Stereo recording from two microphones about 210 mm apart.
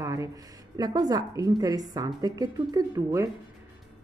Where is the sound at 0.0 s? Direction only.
15° right (ahead or behind).